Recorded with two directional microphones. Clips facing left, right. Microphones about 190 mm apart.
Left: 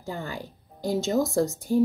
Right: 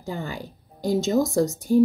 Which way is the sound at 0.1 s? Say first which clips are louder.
Right 2 dB; 15° right (ahead or behind).